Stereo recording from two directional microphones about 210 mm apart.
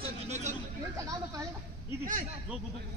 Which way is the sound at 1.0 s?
15° right (ahead or behind).